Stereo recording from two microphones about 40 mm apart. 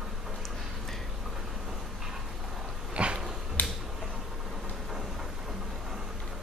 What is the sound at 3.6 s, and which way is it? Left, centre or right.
Finger snapping, left.